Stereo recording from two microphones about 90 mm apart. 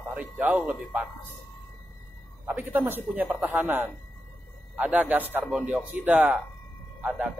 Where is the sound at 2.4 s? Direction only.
20° right (ahead or behind).